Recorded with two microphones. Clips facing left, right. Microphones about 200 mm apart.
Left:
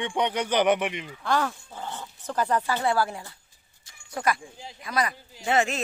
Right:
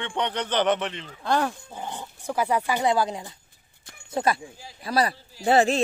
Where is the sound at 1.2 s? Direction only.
15° right (ahead or behind).